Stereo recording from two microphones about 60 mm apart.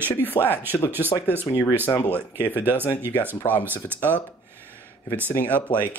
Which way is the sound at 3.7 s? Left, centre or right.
Left.